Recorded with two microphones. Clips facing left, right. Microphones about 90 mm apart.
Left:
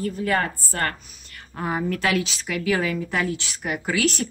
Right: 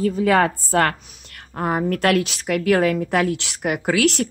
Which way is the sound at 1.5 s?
55° right (ahead or behind).